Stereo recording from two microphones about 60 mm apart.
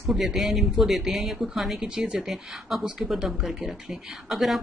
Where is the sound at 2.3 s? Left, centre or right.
Centre.